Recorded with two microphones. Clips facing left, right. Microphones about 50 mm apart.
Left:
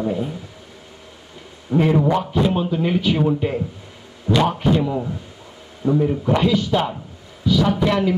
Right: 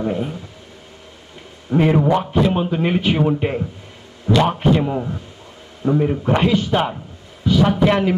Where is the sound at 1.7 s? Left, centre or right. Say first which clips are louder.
Right 2 dB; right.